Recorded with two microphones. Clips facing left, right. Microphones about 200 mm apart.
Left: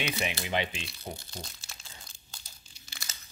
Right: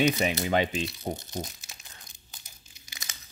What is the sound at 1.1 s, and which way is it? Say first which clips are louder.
Speech: right 8 dB; 20° right (ahead or behind).